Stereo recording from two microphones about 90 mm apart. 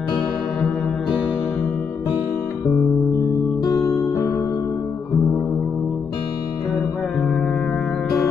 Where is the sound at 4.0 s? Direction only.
35° left (ahead or behind).